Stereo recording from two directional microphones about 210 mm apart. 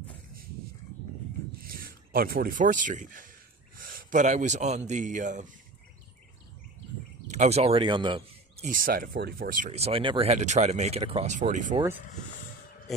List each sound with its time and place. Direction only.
1.6 s speech: 45° right (ahead or behind)
7.2 s speech: 30° right (ahead or behind)
8.6 s speech: 40° right (ahead or behind)